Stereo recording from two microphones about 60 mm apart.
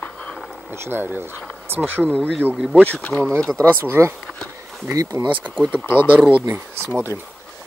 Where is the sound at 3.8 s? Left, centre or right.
Right.